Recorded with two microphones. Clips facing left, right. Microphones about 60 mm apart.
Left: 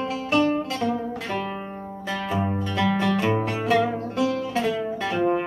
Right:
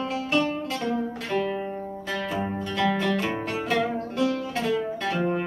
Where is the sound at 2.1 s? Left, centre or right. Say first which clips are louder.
Left 2 dB; centre.